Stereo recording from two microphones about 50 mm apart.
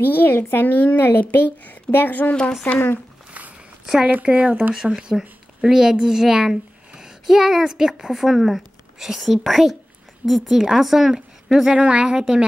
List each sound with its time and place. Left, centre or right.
0.0 s speech: left
4.1 s speech: right
4.9 s a woman's voice: centre